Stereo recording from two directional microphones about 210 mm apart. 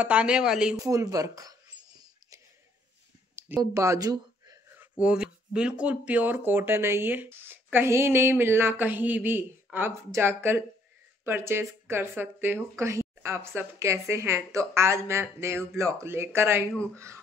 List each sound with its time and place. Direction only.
0.0 s speech: 5° right (ahead or behind)
0.8 s speech: 15° right (ahead or behind)
3.3 s a sound: 10° right (ahead or behind)
4.9 s speech: 5° right (ahead or behind)